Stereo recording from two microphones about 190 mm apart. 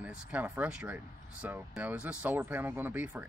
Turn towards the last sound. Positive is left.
turn(degrees=-10)  # may be behind; listen again after turning